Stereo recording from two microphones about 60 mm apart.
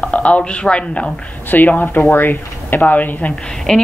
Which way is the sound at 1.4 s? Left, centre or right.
Left.